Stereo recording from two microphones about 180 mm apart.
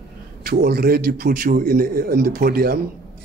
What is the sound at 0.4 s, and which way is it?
Speech, 55° right (ahead or behind).